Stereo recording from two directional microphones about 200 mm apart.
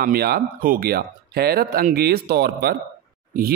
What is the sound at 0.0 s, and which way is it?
Speech, 50° right (ahead or behind).